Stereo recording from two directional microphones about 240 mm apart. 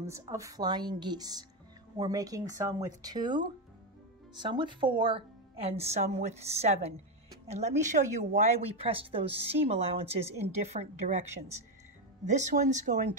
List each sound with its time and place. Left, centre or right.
0.0 s a woman's voice: centre; by 11.2 s right
12.3 s speech: right